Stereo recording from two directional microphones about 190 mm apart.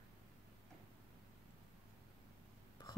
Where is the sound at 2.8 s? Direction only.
20° left (ahead or behind).